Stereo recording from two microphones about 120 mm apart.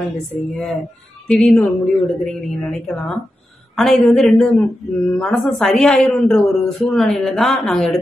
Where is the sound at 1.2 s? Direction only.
5° left (ahead or behind).